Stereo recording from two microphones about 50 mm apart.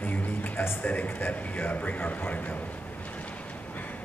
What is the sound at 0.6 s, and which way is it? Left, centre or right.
A man's voice, left.